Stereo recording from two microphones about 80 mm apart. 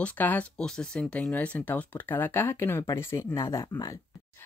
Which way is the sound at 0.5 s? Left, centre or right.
Centre.